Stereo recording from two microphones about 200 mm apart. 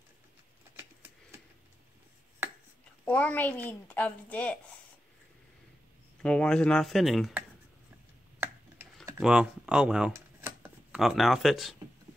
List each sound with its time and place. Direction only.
3.1 s a woman's voice: 10° left (ahead or behind)
6.2 s speech: 5° left (ahead or behind)
9.2 s a sound: 5° right (ahead or behind)
11.0 s speech: centre (ahead or behind)